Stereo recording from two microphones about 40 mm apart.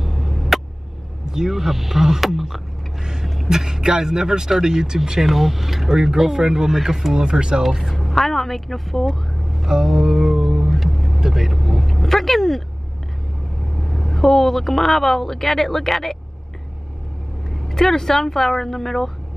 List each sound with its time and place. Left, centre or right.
0.0 s vehicle: centre
1.2 s speech: centre
3.0 s vehicle: centre
3.4 s speech: centre
7.2 s speech: right
7.9 s speech: centre
9.6 s music: centre
10.8 s vehicle: centre
11.1 s vehicle: centre
13.8 s speech: centre
17.5 s speech: centre